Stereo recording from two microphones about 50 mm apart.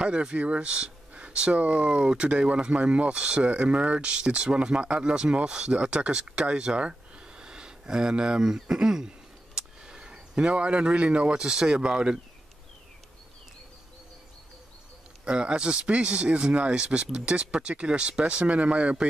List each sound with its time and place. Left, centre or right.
0.0 s speech: centre
15.2 s speech: centre